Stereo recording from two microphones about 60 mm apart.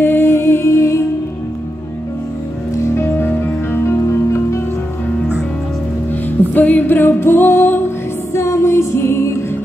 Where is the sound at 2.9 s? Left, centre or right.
Left.